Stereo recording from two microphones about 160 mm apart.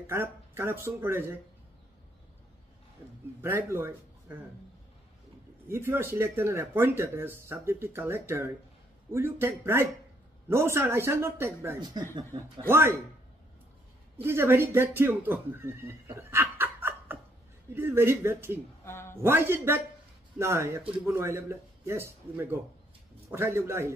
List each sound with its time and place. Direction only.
0.0 s speech: 15° right (ahead or behind)
3.3 s speech: 15° right (ahead or behind)
5.7 s speech: 15° right (ahead or behind)
11.8 s speech: 25° right (ahead or behind)
12.6 s speech: 15° right (ahead or behind)
14.1 s speech: 15° right (ahead or behind)
18.9 s a sound: 15° left (ahead or behind)
19.2 s speech: 15° right (ahead or behind)